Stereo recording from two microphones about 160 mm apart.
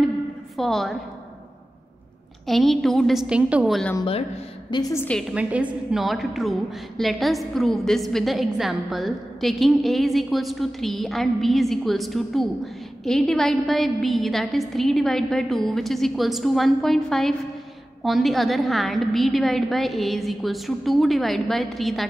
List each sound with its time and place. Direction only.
0.6 s a woman's voice: centre (ahead or behind)
2.4 s a woman's voice: centre (ahead or behind)
4.6 s a woman's voice: 25° left (ahead or behind)
4.9 s a woman's voice: 10° left (ahead or behind)
5.3 s a woman's voice: 10° right (ahead or behind)